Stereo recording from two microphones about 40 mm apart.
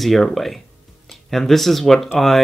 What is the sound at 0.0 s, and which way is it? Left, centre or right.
Speech, centre.